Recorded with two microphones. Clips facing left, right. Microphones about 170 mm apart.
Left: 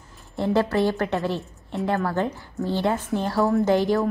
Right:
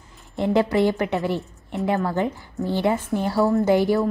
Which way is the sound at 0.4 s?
15° right (ahead or behind).